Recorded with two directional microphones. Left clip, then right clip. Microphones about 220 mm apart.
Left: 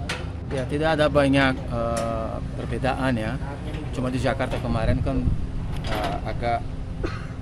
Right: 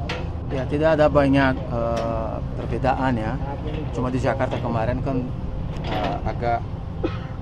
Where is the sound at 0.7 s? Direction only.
70° left (ahead or behind).